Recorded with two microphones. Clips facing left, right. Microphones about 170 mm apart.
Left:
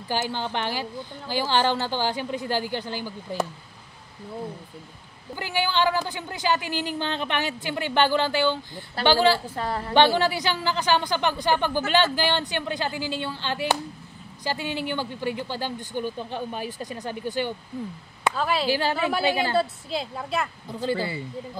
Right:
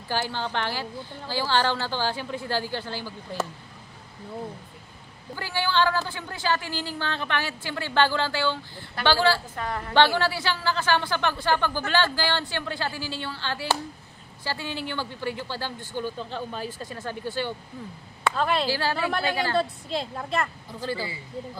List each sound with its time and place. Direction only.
0.1 s a woman's voice: 15° left (ahead or behind)
5.3 s a woman's voice: 15° left (ahead or behind)
9.6 s a woman's voice: 30° left (ahead or behind)
9.9 s a woman's voice: 15° left (ahead or behind)
18.3 s a woman's voice: 5° left (ahead or behind)
18.7 s a woman's voice: 20° left (ahead or behind)
19.5 s a woman's voice: 5° left (ahead or behind)